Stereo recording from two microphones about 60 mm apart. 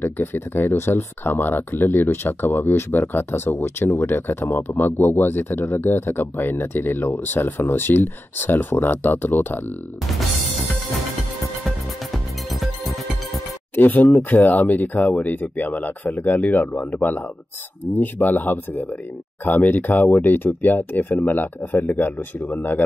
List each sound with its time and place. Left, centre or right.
0.0 s speech: left
12.4 s music: centre
13.7 s speech: left
17.9 s speech: left
21.7 s speech: left
22.5 s speech: left